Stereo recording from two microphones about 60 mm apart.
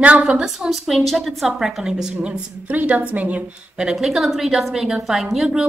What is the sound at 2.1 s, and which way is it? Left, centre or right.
A woman's voice, right.